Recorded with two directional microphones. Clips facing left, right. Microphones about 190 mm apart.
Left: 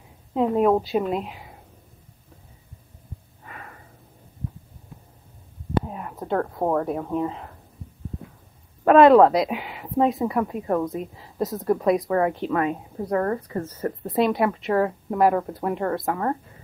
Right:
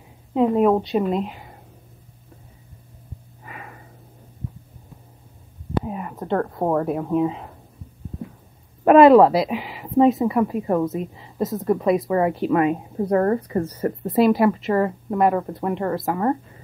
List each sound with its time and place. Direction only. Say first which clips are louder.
0.3 s speech: right 2 dB; centre (ahead or behind)
3.4 s a sound: right 2 dB; 10° right (ahead or behind)
5.9 s speech: right 3 dB; 5° right (ahead or behind)
8.8 s speech: right 2 dB; 5° right (ahead or behind)
12.9 s speech: right 5 dB; 30° right (ahead or behind)
13.5 s speech: right 4 dB; 15° right (ahead or behind)
14.0 s speech: right 5 dB; centre (ahead or behind)